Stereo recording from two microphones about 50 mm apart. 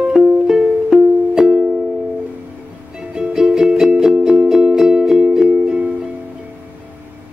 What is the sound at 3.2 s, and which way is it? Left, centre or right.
Music, centre.